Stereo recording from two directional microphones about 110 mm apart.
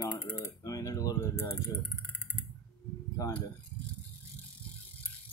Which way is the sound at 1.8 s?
15° left (ahead or behind).